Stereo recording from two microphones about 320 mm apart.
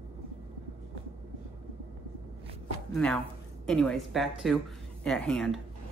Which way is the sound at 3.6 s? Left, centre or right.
Centre.